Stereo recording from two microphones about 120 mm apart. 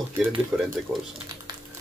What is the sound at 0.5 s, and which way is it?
Speech, 20° right (ahead or behind).